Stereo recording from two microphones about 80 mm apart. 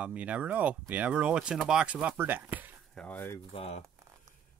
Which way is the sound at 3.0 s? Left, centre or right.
Left.